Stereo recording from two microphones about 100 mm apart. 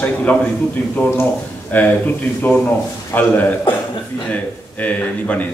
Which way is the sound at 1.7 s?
20° left (ahead or behind).